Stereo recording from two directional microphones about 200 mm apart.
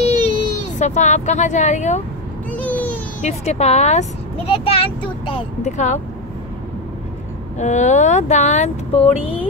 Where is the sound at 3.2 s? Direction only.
35° left (ahead or behind).